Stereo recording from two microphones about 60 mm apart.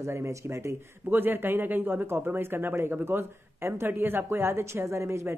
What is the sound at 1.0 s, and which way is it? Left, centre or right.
Speech, right.